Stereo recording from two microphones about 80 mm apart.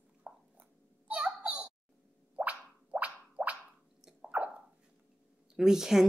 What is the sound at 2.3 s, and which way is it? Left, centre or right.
Plop, centre.